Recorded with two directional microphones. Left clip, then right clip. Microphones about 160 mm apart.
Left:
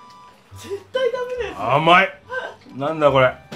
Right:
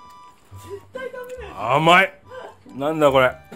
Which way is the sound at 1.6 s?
70° right (ahead or behind).